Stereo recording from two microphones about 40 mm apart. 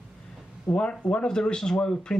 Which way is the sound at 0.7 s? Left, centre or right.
Left.